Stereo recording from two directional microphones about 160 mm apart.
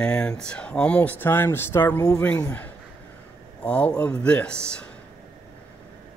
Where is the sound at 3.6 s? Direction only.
10° left (ahead or behind).